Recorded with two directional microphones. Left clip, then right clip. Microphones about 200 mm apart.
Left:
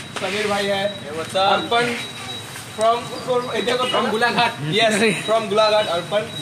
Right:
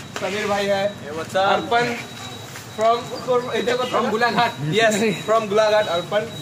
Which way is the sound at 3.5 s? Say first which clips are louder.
Left 1 dB; 10° right (ahead or behind).